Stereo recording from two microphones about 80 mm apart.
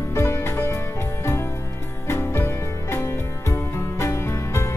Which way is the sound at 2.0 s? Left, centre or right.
Left.